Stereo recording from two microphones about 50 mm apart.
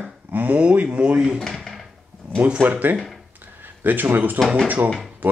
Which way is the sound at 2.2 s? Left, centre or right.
Right.